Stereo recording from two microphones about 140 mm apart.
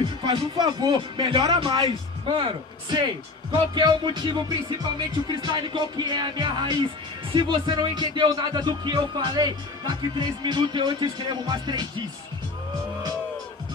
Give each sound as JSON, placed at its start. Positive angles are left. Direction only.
{"t": 0.0, "sound": "speech", "side_deg": -35}